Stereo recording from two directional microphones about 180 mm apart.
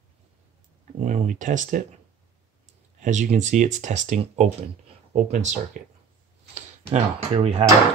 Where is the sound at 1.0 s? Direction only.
45° right (ahead or behind).